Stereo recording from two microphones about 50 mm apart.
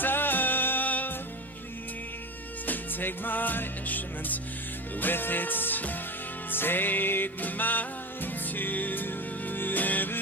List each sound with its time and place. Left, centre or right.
0.0 s music: left
2.6 s music: left